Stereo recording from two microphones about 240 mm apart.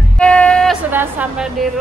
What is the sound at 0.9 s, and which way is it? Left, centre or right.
Speech, centre.